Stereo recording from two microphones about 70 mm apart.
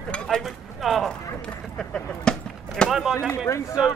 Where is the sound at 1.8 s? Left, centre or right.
Centre.